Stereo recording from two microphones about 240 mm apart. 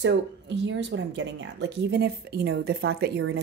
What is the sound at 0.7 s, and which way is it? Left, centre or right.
Speech, right.